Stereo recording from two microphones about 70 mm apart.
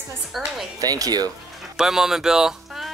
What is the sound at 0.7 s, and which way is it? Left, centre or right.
Speech, right.